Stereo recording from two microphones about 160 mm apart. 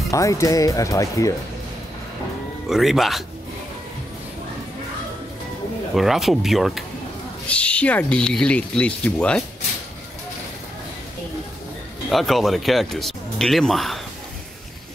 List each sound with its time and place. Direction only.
0.1 s speech: 20° left (ahead or behind)
2.7 s speech: centre (ahead or behind)
5.9 s speech: centre (ahead or behind)
12.1 s speech: centre (ahead or behind)